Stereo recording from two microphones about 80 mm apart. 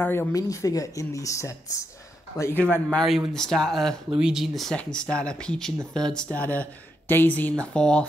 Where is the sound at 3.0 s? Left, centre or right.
Centre.